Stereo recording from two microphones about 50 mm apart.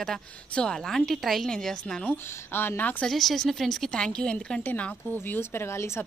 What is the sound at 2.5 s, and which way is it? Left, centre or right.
Speech, left.